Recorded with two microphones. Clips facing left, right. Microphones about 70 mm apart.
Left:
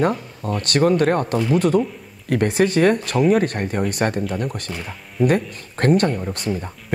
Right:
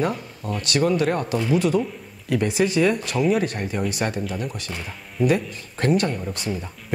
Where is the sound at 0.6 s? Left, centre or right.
Left.